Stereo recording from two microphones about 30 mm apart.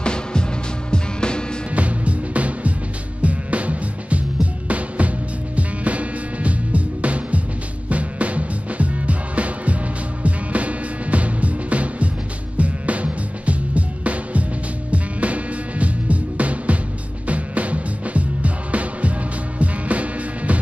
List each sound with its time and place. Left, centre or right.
0.0 s music: left
1.7 s music: right